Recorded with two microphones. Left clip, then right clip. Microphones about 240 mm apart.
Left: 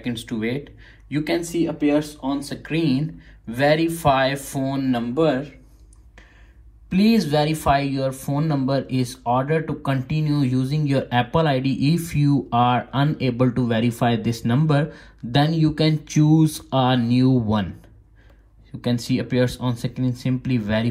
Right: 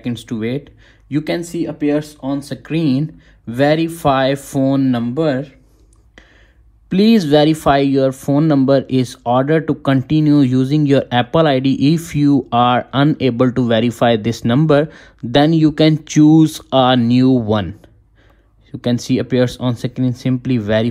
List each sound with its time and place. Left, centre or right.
0.0 s speech: right
6.9 s speech: right
18.8 s speech: right